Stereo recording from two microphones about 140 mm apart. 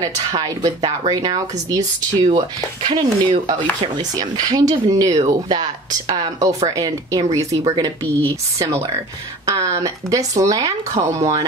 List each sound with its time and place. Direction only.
0.0 s speech: 25° right (ahead or behind)
9.5 s speech: 25° right (ahead or behind)